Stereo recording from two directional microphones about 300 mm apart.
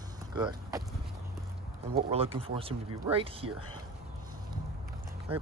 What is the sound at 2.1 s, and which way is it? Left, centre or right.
Speech, centre.